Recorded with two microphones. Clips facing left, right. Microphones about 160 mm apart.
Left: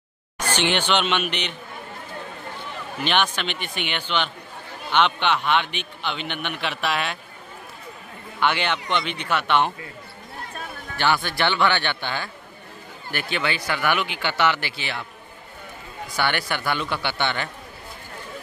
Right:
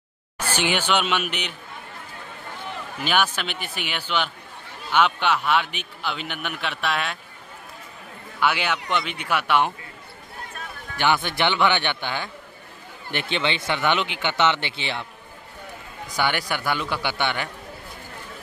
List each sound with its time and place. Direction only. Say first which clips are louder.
0.4 s speech: left 1 dB; 10° right (ahead or behind)
3.0 s a man's voice: even; 5° right (ahead or behind)
8.4 s speech: even; 5° right (ahead or behind)
11.0 s speech: even; 15° right (ahead or behind)
16.2 s speech: even; 15° right (ahead or behind)